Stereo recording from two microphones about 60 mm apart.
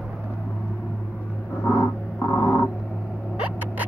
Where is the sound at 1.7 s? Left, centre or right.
Left.